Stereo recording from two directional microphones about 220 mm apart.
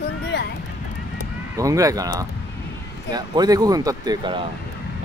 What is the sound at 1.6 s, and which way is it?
Speech, 15° right (ahead or behind).